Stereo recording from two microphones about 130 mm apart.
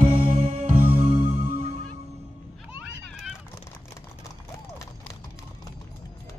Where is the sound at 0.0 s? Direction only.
50° right (ahead or behind).